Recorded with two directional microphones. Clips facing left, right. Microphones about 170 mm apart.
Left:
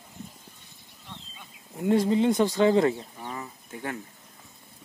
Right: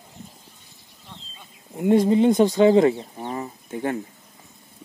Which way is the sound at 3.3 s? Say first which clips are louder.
Right 8 dB; 35° right (ahead or behind).